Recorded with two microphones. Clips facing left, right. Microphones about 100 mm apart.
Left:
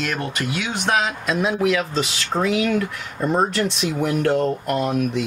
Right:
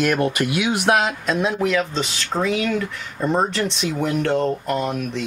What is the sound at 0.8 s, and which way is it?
Speech, 5° right (ahead or behind).